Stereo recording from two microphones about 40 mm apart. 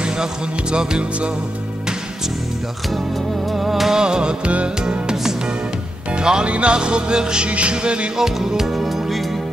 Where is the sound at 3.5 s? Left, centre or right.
Centre.